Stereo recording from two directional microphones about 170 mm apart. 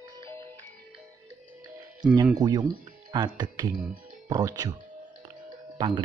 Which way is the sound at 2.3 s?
20° right (ahead or behind).